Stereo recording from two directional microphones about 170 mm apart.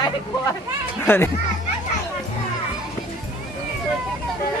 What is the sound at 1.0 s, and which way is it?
Speech, 15° left (ahead or behind).